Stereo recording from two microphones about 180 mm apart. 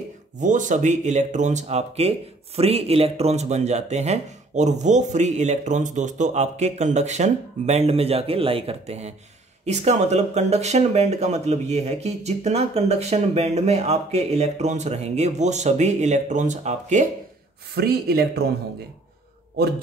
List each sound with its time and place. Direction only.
0.4 s speech: 45° right (ahead or behind)
17.7 s speech: 60° right (ahead or behind)